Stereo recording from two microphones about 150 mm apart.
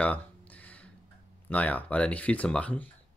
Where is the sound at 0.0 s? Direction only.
10° left (ahead or behind).